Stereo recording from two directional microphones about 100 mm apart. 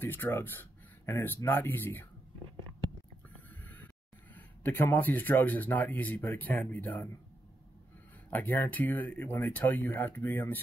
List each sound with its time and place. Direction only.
0.0 s speech: 20° left (ahead or behind)
3.3 s a sound: 15° left (ahead or behind)
4.6 s speech: 20° left (ahead or behind)
8.3 s speech: 20° left (ahead or behind)